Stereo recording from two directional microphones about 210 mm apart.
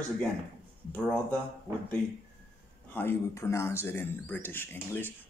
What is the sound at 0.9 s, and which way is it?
Speech, 5° left (ahead or behind).